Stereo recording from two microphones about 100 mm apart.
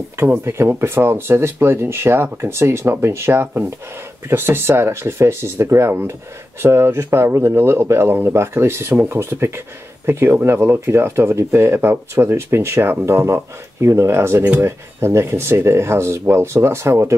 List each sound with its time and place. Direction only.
0.2 s speech: 25° right (ahead or behind)